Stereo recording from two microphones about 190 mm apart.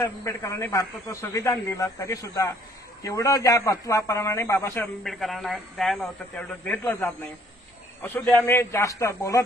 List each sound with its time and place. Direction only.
0.0 s a man's voice: 15° left (ahead or behind)
5.0 s a man's voice: centre (ahead or behind)
8.3 s a man's voice: 10° left (ahead or behind)